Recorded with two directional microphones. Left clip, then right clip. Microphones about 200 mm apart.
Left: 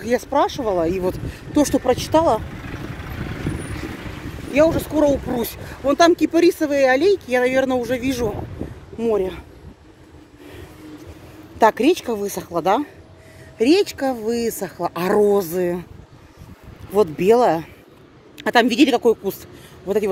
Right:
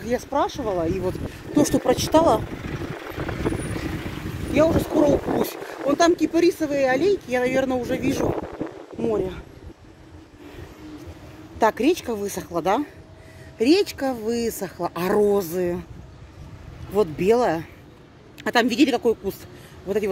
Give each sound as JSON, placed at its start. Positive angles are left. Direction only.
{"t": 0.0, "sound": "speech", "side_deg": 40}
{"t": 1.9, "sound": "speech", "side_deg": -10}
{"t": 3.0, "sound": "vehicle", "side_deg": 0}
{"t": 4.0, "sound": "vehicle", "side_deg": -50}
{"t": 4.6, "sound": "speech", "side_deg": 20}
{"t": 9.0, "sound": "speech", "side_deg": 30}
{"t": 11.5, "sound": "speech", "side_deg": 20}
{"t": 16.9, "sound": "speech", "side_deg": 25}